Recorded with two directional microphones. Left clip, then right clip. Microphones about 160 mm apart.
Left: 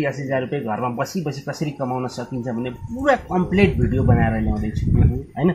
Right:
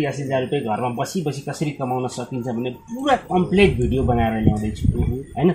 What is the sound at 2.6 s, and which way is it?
Speech, 15° right (ahead or behind).